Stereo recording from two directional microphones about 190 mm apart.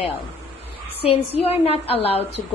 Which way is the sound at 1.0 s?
30° left (ahead or behind).